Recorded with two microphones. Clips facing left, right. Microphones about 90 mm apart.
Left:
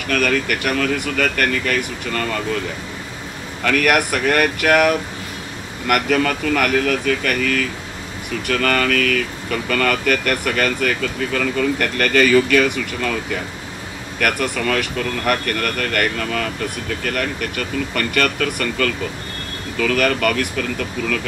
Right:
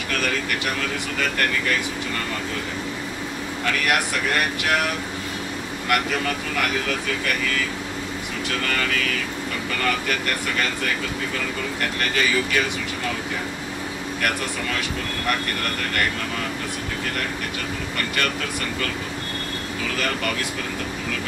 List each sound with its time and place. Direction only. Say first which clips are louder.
0.1 s speech: left 7 dB; 60° left (ahead or behind)
3.6 s speech: left 6 dB; 55° left (ahead or behind)
14.2 s speech: left 7 dB; 60° left (ahead or behind)
17.9 s speech: left 6 dB; 60° left (ahead or behind)